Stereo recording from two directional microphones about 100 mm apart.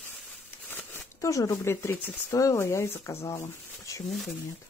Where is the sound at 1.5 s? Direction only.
30° left (ahead or behind).